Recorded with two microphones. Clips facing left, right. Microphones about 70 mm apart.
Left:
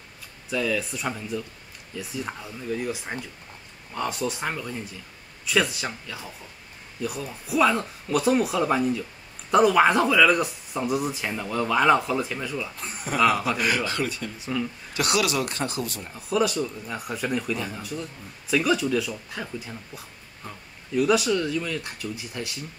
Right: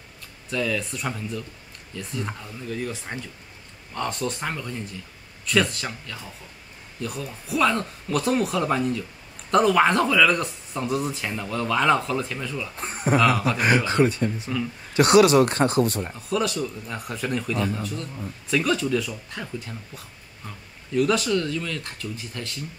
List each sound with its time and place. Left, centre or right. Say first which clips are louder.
0.5 s speech: even; centre
12.7 s speech: right 7 dB; right
13.2 s speech: left 3 dB; centre
13.6 s speech: right 5 dB; right
16.2 s speech: left 3 dB; centre